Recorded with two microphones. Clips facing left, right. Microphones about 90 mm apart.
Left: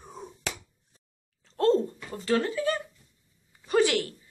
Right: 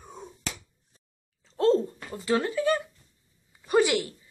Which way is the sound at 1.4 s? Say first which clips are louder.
Right 1 dB; 5° right (ahead or behind).